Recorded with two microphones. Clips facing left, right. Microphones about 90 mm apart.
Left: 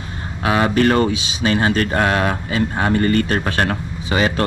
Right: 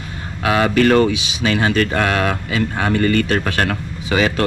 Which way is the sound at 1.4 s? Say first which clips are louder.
Even; 30° left (ahead or behind).